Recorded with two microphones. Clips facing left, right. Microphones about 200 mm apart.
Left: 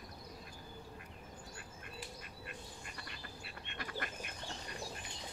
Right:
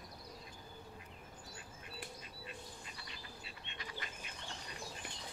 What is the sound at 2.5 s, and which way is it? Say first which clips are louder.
Duck: even; 60° left (ahead or behind).